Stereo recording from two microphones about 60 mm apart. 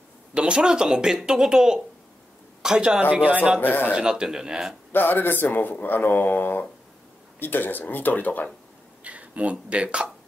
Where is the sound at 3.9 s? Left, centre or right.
Centre.